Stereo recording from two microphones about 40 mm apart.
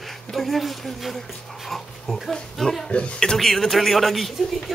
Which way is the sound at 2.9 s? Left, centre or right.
Left.